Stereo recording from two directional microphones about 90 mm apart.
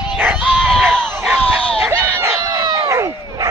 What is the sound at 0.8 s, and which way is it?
Crowd, 20° right (ahead or behind).